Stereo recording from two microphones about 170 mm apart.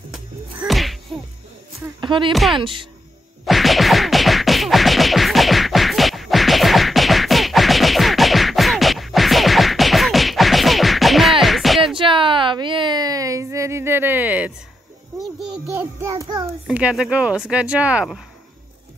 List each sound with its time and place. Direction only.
0.1 s music: centre (ahead or behind)
2.0 s speech: 30° right (ahead or behind)
2.3 s speech: centre (ahead or behind)
2.6 s speech: 30° right (ahead or behind)
3.4 s a sound: centre (ahead or behind)
11.4 s music: centre (ahead or behind)
12.0 s a sound: 30° right (ahead or behind); by 15.6 s centre (ahead or behind)
15.7 s child singing: 5° right (ahead or behind)
16.1 s child singing: 20° right (ahead or behind)
16.6 s speech: 5° right (ahead or behind)